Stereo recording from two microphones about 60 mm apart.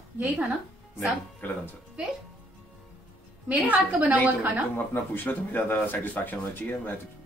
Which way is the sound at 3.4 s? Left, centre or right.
Right.